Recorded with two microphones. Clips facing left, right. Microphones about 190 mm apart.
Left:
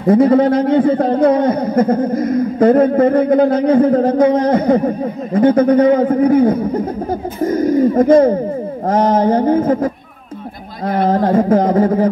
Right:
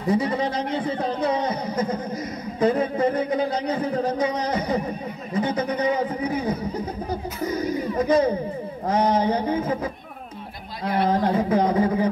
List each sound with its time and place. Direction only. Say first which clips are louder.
0.0 s speech: left 12 dB; 55° left (ahead or behind)